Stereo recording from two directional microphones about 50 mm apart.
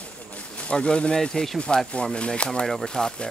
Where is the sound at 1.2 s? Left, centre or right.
Centre.